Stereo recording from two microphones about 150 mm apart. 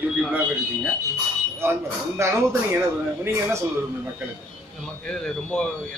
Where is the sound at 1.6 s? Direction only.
15° right (ahead or behind).